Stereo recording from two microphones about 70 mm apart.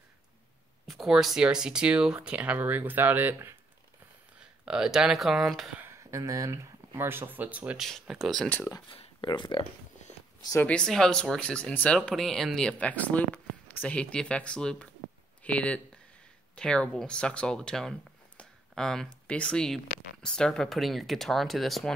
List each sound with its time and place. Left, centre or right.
0.8 s speech: centre; by 3.3 s right
4.4 s speech: centre
5.9 s speech: right
7.8 s speech: centre
10.6 s speech: centre
12.3 s speech: centre
12.7 s speech: left
18.4 s a sound: centre
19.2 s speech: centre